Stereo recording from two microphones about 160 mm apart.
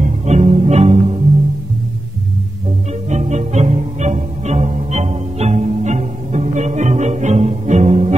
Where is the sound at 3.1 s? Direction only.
45° right (ahead or behind).